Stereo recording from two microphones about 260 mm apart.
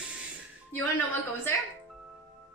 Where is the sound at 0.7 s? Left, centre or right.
Centre.